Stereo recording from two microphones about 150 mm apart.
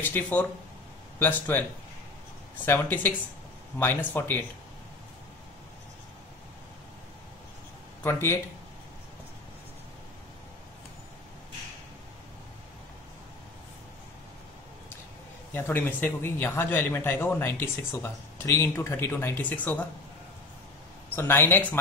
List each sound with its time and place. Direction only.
0.0 s speech: 10° left (ahead or behind)
8.0 s speech: 15° left (ahead or behind)
15.5 s speech: 15° left (ahead or behind)
21.1 s speech: 15° left (ahead or behind)